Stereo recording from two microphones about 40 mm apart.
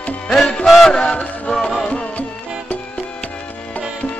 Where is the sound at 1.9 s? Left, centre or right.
Left.